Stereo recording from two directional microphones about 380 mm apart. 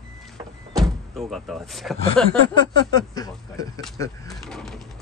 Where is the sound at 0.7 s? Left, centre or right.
Centre.